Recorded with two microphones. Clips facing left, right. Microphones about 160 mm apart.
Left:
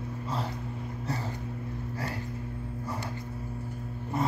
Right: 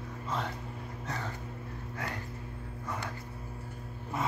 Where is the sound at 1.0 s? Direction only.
35° left (ahead or behind).